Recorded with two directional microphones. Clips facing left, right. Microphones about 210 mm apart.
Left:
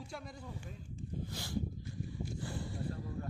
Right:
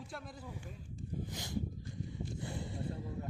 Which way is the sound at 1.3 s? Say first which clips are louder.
Left 2 dB; 20° right (ahead or behind).